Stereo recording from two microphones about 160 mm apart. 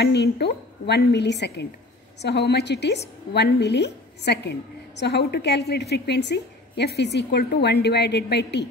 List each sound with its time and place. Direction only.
0.0 s a woman's voice: 90° left